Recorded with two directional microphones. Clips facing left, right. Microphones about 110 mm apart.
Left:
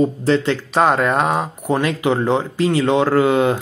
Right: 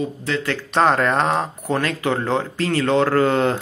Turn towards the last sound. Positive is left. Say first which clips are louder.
# left 2 dB
turn(degrees=10)  # may be behind; listen again after turning